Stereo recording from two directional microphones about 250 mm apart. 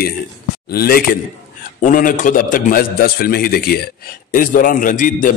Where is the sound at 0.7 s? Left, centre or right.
Left.